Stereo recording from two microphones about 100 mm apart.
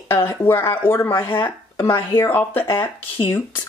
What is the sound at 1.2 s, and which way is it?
Speech, 60° left (ahead or behind).